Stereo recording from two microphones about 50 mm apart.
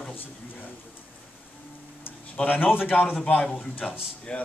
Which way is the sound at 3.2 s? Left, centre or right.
Centre.